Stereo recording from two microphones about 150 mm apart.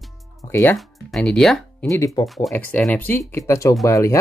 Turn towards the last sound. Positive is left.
turn(degrees=20)  # may be behind; listen again after turning